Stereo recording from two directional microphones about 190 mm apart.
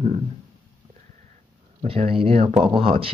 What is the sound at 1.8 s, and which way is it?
Speech, 30° right (ahead or behind).